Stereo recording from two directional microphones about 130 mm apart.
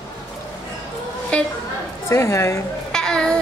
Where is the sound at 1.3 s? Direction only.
10° left (ahead or behind).